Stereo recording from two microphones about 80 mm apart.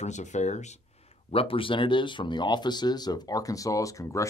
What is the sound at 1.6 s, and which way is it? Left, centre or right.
Speech, left.